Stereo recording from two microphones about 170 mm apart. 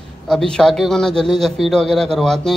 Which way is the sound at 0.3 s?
5° left (ahead or behind).